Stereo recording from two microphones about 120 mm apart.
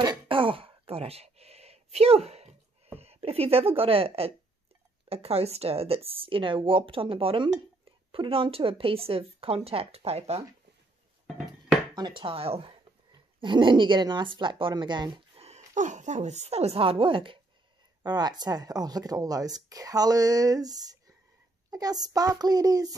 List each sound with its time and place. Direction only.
0.0 s speech: 40° right (ahead or behind); by 10.4 s 60° right (ahead or behind)
11.9 s speech: 40° right (ahead or behind)
13.1 s speech: 40° right (ahead or behind)
15.4 s speech: 80° right; by 22.9 s 30° right (ahead or behind)